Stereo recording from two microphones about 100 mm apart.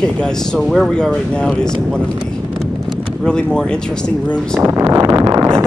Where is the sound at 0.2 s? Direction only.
5° left (ahead or behind).